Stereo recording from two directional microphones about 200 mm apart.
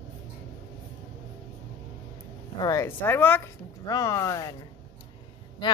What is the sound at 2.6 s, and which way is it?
A woman's voice, 15° left (ahead or behind).